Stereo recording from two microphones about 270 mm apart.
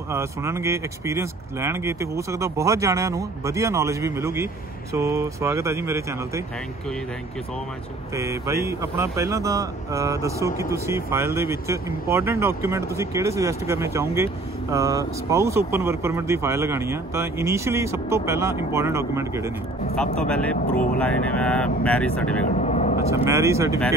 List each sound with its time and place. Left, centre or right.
0.1 s speech: centre
8.1 s speech: centre
20.0 s speech: centre
20.7 s speech: left
21.0 s speech: centre
22.6 s vehicle: left
23.2 s speech: centre